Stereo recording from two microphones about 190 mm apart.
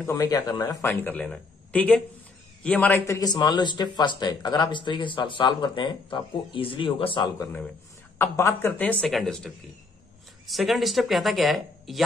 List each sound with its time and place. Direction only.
0.0 s a man's voice: 20° left (ahead or behind)
8.2 s a man's voice: 15° left (ahead or behind)